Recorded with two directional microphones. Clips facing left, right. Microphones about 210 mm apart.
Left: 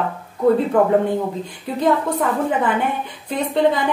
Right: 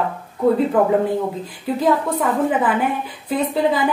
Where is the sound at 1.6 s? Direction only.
Centre (ahead or behind).